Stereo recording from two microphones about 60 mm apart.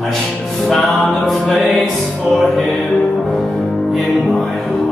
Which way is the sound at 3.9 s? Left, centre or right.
Centre.